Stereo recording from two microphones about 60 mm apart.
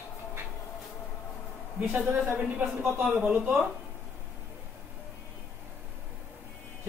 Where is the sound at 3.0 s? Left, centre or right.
Right.